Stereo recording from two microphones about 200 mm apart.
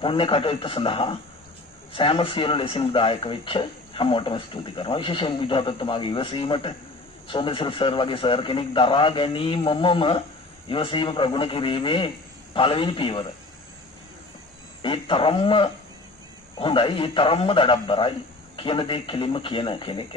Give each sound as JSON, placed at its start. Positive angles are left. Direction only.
{"t": 0.0, "sound": "speech", "side_deg": 25}
{"t": 14.8, "sound": "speech", "side_deg": 25}